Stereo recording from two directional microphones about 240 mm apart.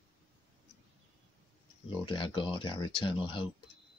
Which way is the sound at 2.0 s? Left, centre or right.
Left.